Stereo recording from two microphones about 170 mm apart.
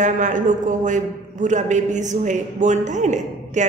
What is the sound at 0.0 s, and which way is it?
A woman's voice, 45° right (ahead or behind).